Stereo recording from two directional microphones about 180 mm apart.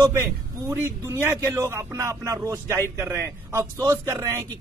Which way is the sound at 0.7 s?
15° right (ahead or behind).